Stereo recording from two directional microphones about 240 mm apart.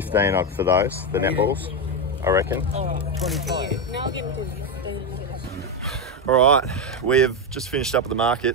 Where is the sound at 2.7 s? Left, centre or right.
Right.